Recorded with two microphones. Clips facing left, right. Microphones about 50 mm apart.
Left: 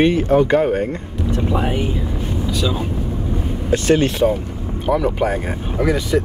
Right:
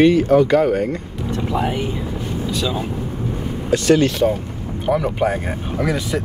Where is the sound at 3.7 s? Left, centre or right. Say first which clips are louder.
Right 1 dB; left.